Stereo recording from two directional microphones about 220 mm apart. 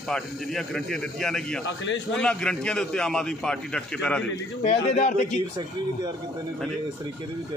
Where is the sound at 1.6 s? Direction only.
55° left (ahead or behind).